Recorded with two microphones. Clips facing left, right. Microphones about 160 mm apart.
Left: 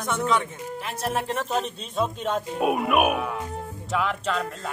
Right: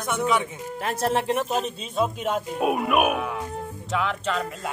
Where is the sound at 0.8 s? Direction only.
45° right (ahead or behind).